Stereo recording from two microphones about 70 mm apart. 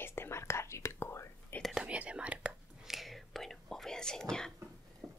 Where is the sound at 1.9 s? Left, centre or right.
Centre.